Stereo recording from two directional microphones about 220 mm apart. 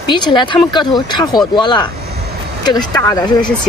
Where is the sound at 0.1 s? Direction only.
20° left (ahead or behind).